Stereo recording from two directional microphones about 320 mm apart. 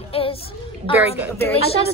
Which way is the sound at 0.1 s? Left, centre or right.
Centre.